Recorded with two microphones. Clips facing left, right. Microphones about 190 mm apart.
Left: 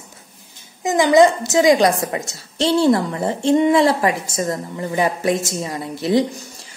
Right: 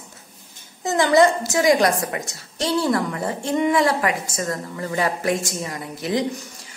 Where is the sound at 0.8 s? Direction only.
15° left (ahead or behind).